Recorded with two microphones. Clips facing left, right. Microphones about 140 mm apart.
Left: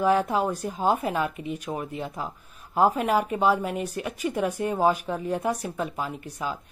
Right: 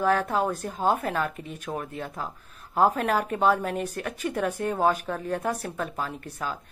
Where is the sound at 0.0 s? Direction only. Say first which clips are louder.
Left 2 dB; 15° left (ahead or behind).